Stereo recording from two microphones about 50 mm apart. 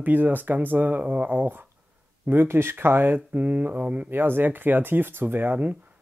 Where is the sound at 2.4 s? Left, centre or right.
Right.